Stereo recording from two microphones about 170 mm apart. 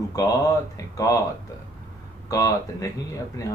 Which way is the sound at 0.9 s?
20° left (ahead or behind).